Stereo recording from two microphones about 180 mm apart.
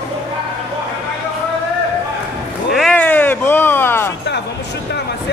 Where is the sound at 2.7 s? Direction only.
5° left (ahead or behind).